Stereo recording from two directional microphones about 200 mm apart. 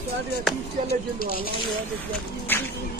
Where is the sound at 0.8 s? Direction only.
45° left (ahead or behind).